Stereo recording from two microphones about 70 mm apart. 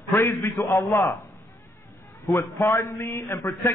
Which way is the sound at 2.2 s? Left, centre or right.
Left.